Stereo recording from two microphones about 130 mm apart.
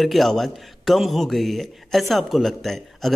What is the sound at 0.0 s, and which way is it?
A man's voice, centre (ahead or behind).